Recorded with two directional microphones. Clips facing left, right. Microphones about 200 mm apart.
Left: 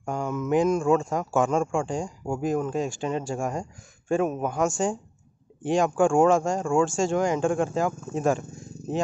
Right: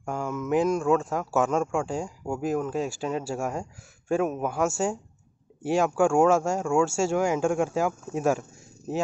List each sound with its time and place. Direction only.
0.0 s speech: 5° right (ahead or behind)